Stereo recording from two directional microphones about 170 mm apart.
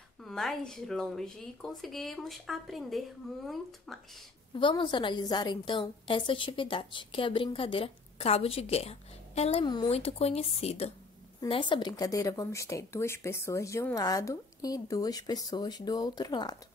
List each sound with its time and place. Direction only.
0.2 s speech: centre (ahead or behind)
4.6 s a woman's voice: 30° left (ahead or behind)